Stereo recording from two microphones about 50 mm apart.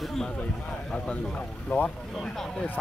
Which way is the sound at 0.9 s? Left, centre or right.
Left.